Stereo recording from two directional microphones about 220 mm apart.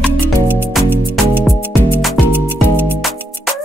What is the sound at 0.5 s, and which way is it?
Music, 5° right (ahead or behind).